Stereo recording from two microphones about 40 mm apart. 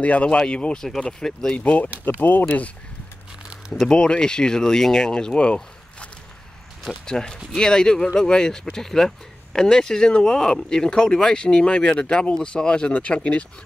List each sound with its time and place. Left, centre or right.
0.0 s speech: left; by 1.6 s centre
1.6 s speech: left
2.0 s speech: left
2.4 s speech: left
3.9 s speech: left
5.3 s a sound: left
7.1 s speech: centre